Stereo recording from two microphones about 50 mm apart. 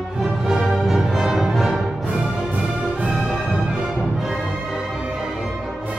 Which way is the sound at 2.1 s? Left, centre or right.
Centre.